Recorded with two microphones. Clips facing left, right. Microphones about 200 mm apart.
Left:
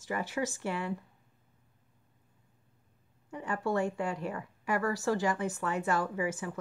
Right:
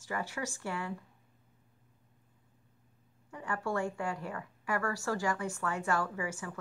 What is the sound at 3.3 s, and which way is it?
A woman's voice, 20° left (ahead or behind).